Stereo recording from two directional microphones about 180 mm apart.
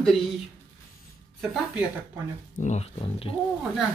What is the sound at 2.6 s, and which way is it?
Speech, 35° left (ahead or behind).